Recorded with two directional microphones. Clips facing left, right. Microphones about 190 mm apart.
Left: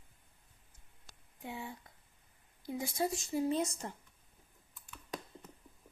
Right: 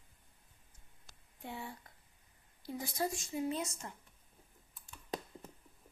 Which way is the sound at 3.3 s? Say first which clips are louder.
Left 4 dB; 35° left (ahead or behind).